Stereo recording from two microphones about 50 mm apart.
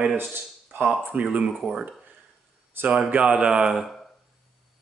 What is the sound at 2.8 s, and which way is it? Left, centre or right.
Speech, right.